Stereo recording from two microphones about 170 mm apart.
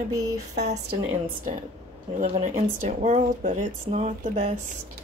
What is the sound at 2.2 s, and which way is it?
Speech, 45° right (ahead or behind).